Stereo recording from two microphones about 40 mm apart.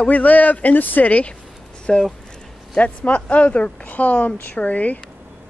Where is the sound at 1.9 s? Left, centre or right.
Centre.